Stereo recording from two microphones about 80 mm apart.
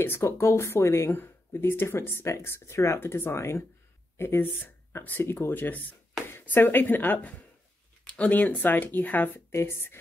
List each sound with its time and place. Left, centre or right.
0.0 s speech: left